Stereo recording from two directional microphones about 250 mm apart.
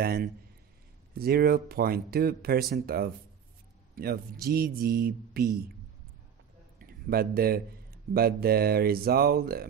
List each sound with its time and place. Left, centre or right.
0.0 s a man's voice: right
6.8 s speech: right